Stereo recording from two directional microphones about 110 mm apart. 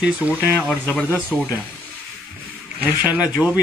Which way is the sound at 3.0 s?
15° right (ahead or behind).